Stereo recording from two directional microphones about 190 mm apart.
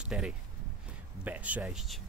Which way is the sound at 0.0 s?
5° right (ahead or behind).